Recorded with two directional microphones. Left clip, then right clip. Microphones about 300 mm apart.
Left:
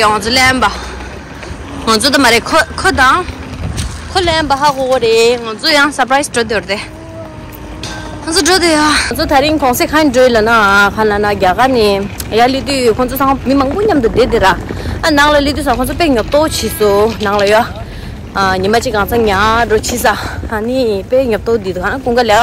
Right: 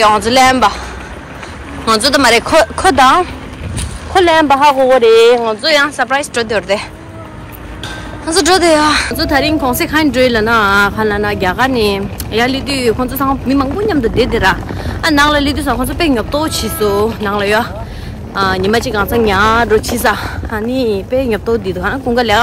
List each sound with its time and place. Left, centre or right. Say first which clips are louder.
0.0 s speech: right 1 dB; centre
1.9 s speech: even; centre
4.1 s speech: right 4 dB; centre
5.6 s speech: left 1 dB; centre
8.3 s speech: right 1 dB; centre
9.1 s speech: left 2 dB; centre